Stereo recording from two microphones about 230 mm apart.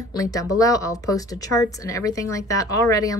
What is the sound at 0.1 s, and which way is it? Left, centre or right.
Speech, centre.